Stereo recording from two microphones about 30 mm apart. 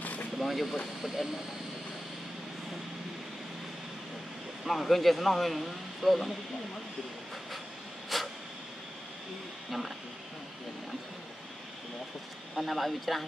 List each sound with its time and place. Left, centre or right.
0.0 s a sound: left
0.4 s vehicle: centre
1.0 s speech: centre
4.6 s speech: centre
8.1 s a sound: centre
12.5 s speech: centre